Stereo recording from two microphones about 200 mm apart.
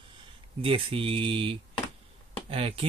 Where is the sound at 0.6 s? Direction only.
25° right (ahead or behind).